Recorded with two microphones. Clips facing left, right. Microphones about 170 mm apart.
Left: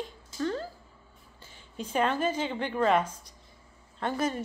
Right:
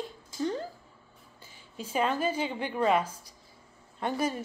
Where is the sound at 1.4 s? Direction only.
10° right (ahead or behind).